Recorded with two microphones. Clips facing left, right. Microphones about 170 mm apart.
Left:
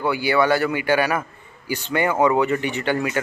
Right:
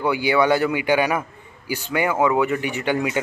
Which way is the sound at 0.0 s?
15° right (ahead or behind).